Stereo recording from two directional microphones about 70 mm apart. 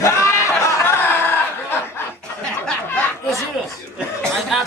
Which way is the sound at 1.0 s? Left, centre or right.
Left.